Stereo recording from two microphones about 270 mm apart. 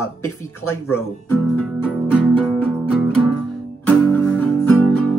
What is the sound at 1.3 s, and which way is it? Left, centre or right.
Music, centre.